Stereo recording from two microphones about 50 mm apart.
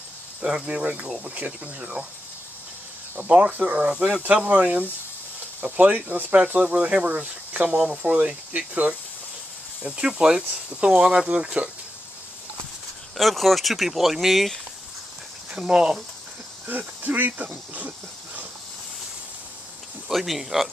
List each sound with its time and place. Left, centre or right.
0.7 s speech: right
3.3 s speech: right
13.2 s speech: centre
15.5 s speech: centre
16.6 s speech: right
20.1 s speech: centre